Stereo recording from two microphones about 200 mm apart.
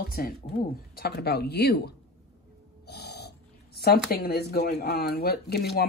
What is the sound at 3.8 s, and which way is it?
Speech, 50° left (ahead or behind).